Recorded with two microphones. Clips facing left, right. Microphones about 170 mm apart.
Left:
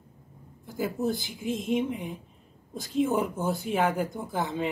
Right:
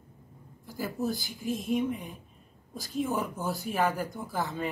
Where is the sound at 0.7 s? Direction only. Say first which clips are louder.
Left 3 dB; 20° left (ahead or behind).